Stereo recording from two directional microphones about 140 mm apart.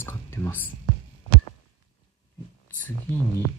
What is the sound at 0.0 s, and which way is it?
Whispering, 15° left (ahead or behind).